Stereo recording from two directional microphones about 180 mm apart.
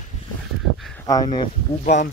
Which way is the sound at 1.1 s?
25° left (ahead or behind).